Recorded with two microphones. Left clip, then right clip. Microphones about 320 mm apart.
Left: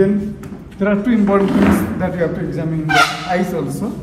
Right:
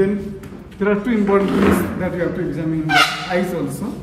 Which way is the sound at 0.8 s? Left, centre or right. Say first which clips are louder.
Left 2 dB; centre.